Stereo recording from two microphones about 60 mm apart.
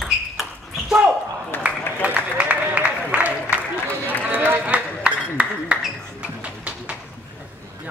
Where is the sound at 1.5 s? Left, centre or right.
Left.